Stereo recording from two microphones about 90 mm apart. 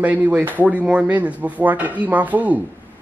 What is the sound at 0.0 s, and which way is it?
A woman's voice, 15° right (ahead or behind).